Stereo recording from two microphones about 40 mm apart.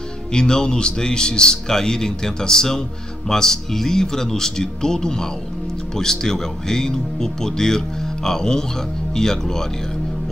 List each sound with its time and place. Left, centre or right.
0.3 s speech: centre